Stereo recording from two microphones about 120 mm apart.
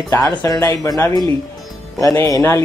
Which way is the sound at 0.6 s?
25° left (ahead or behind).